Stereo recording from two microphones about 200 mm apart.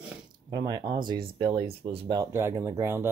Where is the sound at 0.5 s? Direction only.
20° right (ahead or behind).